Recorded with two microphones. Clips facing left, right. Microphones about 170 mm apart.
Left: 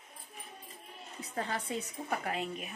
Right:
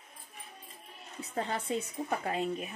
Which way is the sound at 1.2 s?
25° right (ahead or behind).